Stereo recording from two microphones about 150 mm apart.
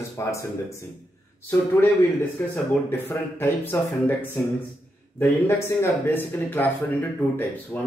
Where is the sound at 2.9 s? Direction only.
15° left (ahead or behind).